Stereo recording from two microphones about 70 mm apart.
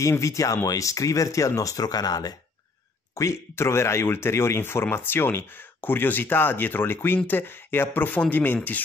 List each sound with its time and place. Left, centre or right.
0.0 s speech: left
3.2 s speech: left